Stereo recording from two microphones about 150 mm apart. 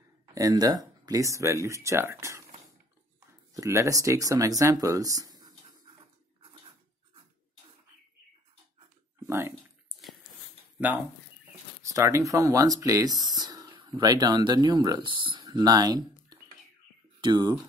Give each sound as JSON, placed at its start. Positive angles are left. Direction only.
{"t": 0.3, "sound": "speech", "side_deg": -20}
{"t": 3.5, "sound": "speech", "side_deg": -20}
{"t": 11.8, "sound": "speech", "side_deg": -20}